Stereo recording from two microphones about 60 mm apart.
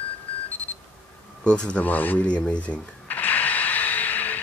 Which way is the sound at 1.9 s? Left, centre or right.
Left.